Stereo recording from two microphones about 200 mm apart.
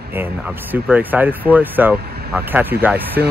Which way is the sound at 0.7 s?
10° right (ahead or behind).